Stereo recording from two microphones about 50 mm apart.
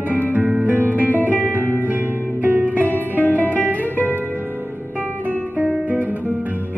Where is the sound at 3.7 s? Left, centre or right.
Right.